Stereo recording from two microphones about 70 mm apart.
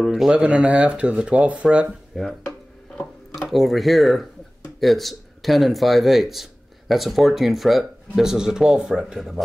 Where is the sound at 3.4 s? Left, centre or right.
Centre.